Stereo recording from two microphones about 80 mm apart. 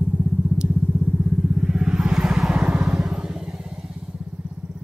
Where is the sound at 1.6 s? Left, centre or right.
Centre.